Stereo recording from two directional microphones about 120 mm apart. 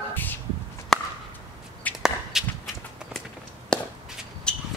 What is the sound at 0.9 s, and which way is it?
Chop, 5° left (ahead or behind).